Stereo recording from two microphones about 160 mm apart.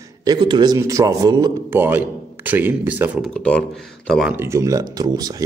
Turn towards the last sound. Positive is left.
turn(degrees=-25)  # may be behind; listen again after turning